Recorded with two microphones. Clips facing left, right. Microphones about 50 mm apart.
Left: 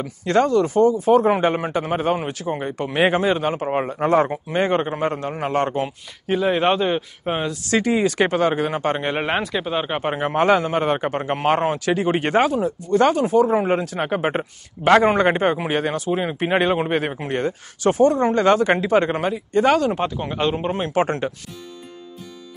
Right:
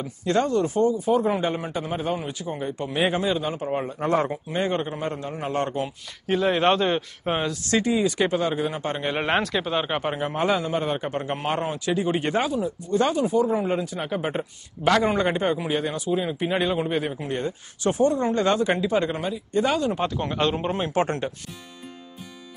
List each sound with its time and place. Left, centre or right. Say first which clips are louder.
0.0 s speech: left 5 dB; left
0.9 s speech: left 6 dB; left
3.6 s a man's voice: left 5 dB; left
6.2 s speech: left 2 dB; centre
7.8 s speech: left 4 dB; left
9.2 s speech: left 1 dB; centre
10.1 s a man's voice: left 9 dB; left
11.5 s speech: left 5 dB; left
13.9 s a man's voice: left 5 dB; left
19.9 s a man's voice: left 2 dB; centre